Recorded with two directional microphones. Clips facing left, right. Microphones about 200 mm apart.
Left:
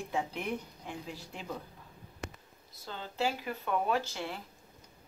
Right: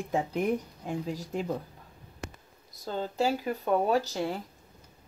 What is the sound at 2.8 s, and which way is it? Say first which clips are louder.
Speech: right 6 dB; 45° right (ahead or behind).